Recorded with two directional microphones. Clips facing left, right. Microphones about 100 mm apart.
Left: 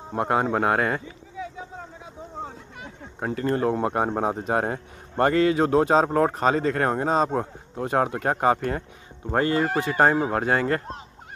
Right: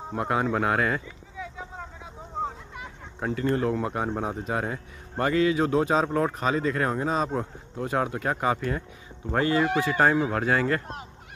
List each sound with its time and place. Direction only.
0.1 s speech: 40° left (ahead or behind)
3.2 s speech: 40° left (ahead or behind)
3.8 s speech: 50° left (ahead or behind)